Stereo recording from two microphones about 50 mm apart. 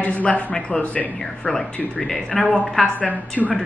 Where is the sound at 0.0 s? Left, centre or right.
Left.